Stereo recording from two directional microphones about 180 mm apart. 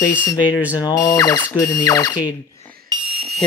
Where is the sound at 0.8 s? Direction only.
20° left (ahead or behind).